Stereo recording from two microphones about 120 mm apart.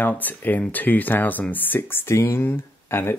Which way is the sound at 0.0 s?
15° left (ahead or behind).